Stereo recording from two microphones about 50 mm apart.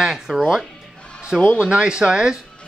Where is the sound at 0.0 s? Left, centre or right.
Centre.